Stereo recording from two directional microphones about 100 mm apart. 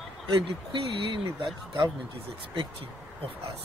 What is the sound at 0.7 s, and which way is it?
Speech, 55° right (ahead or behind).